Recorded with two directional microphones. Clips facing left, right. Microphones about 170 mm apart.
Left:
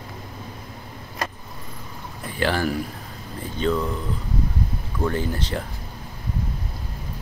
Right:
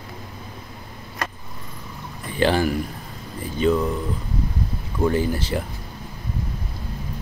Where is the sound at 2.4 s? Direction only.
20° right (ahead or behind).